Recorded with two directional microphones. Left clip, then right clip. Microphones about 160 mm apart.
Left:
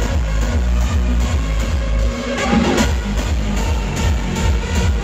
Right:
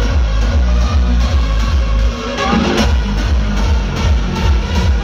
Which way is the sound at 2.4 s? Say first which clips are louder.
Right 2 dB; 30° right (ahead or behind).